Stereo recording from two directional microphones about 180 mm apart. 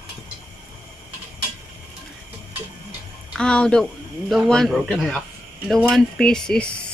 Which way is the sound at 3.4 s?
5° left (ahead or behind).